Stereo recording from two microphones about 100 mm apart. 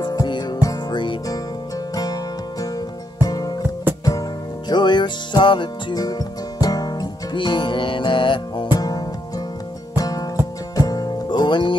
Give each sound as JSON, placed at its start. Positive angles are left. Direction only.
{"t": 0.0, "sound": "music", "side_deg": 45}
{"t": 3.2, "sound": "music", "side_deg": 35}
{"t": 3.9, "sound": "music", "side_deg": -20}
{"t": 4.6, "sound": "music", "side_deg": 50}
{"t": 5.9, "sound": "music", "side_deg": 40}
{"t": 9.9, "sound": "music", "side_deg": 35}